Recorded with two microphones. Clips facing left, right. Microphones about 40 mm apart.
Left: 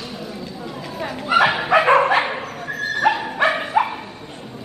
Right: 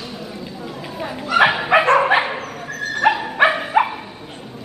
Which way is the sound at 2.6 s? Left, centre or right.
Centre.